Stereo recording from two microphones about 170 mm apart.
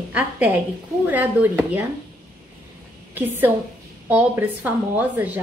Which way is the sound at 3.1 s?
10° right (ahead or behind).